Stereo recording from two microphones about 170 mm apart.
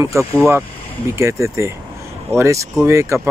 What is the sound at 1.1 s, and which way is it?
Speech, 15° right (ahead or behind).